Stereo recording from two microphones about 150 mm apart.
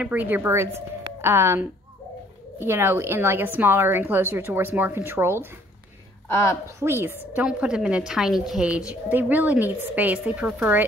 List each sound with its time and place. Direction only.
0.0 s a woman's voice: 10° right (ahead or behind)
6.3 s a woman's voice: 20° left (ahead or behind)
6.8 s a woman's voice: 15° right (ahead or behind)